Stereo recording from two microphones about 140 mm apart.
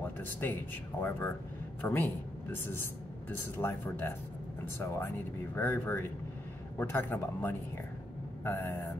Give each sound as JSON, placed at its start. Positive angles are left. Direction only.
{"t": 0.0, "sound": "speech", "side_deg": 15}